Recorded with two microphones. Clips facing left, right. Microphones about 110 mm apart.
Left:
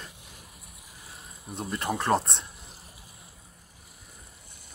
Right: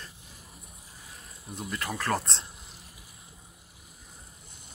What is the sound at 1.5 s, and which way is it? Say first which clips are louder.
Speech: left 4 dB; 25° left (ahead or behind).